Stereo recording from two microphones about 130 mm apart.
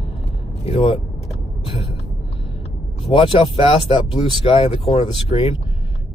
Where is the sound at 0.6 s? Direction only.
50° left (ahead or behind).